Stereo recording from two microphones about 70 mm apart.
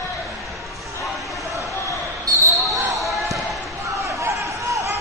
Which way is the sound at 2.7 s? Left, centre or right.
Centre.